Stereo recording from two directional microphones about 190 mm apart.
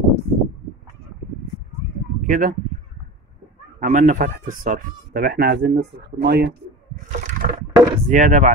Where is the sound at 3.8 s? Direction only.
40° right (ahead or behind); by 6.5 s 60° right (ahead or behind).